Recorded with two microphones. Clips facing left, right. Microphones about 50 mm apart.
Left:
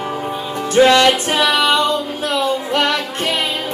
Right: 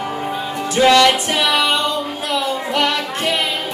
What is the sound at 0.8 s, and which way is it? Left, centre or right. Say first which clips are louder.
Music: left 1 dB; left.